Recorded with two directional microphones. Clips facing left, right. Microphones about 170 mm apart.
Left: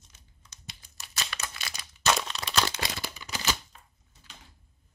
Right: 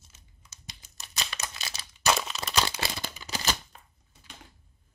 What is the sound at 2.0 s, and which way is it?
Crumpling, 5° right (ahead or behind).